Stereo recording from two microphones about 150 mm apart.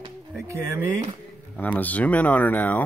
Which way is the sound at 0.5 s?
15° right (ahead or behind).